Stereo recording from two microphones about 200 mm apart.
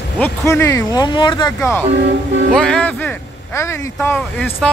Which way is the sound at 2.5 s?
5° left (ahead or behind).